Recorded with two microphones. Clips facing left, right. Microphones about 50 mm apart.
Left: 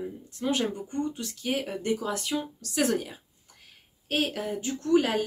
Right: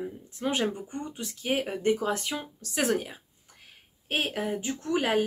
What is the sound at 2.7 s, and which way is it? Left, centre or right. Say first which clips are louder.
Speech: left 1 dB; centre.